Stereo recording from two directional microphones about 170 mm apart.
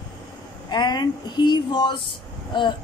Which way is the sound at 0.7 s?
25° left (ahead or behind).